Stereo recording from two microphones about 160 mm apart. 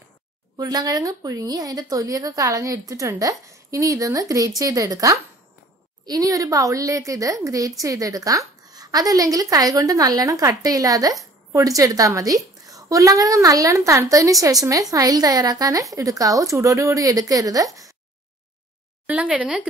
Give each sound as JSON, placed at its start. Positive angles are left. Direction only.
{"t": 0.6, "sound": "a woman's voice", "side_deg": -25}
{"t": 19.0, "sound": "speech", "side_deg": -10}